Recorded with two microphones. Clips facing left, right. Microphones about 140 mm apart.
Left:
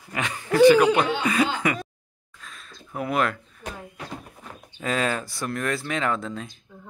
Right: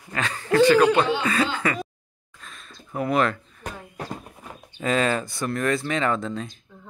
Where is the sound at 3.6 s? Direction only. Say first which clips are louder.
Right 1 dB; 45° right (ahead or behind).